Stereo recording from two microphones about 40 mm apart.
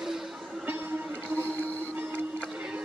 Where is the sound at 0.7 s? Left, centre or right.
Right.